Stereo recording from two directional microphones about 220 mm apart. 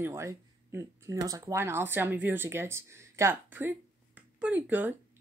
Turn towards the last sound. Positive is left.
turn(degrees=-10)  # may be behind; listen again after turning